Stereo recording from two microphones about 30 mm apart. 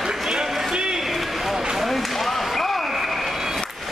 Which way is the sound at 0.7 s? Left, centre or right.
Right.